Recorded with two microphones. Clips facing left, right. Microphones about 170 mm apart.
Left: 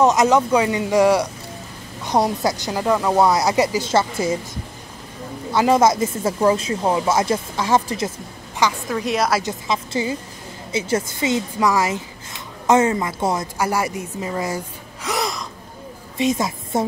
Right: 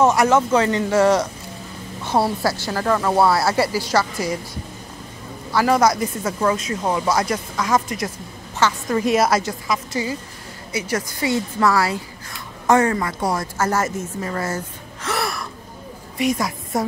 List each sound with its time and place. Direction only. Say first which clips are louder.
0.0 s a woman's voice: left 1 dB; 20° left (ahead or behind)
5.5 s speech: left 1 dB; 20° left (ahead or behind)
8.8 s a woman's voice: right 3 dB; centre (ahead or behind)
9.4 s a woman's voice: even; 25° left (ahead or behind)